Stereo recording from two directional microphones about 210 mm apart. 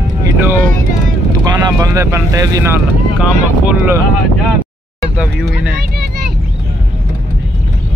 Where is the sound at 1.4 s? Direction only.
20° right (ahead or behind).